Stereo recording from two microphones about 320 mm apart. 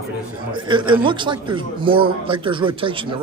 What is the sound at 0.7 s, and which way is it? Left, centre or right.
A man's voice, centre.